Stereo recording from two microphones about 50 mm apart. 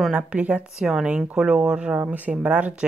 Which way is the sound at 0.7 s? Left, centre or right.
Centre.